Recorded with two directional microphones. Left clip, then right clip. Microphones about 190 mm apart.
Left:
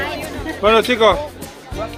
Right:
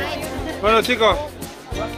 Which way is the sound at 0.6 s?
30° left (ahead or behind).